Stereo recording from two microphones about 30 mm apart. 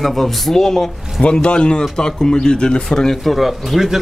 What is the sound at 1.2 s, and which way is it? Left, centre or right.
Speech, left.